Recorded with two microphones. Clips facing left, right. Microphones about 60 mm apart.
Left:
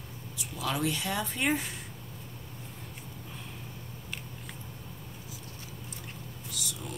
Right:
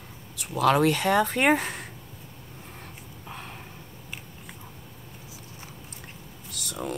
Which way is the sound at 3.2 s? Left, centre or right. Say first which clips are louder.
Right 9 dB; right.